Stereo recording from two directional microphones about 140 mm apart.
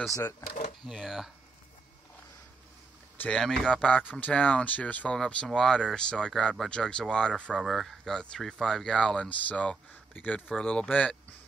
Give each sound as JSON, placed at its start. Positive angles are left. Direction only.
{"t": 0.5, "sound": "a sound", "side_deg": 65}
{"t": 0.8, "sound": "speech", "side_deg": 0}
{"t": 3.2, "sound": "speech", "side_deg": 5}